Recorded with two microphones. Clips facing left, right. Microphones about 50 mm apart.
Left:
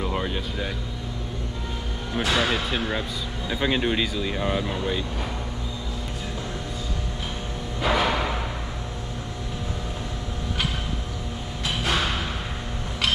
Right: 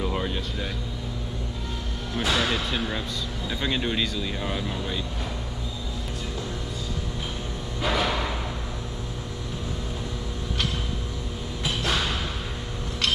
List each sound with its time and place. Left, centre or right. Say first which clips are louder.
0.0 s speech: left 1 dB; centre
2.1 s speech: left 2 dB; centre
7.8 s a sound: left 3 dB; centre
11.8 s music: left 2 dB; centre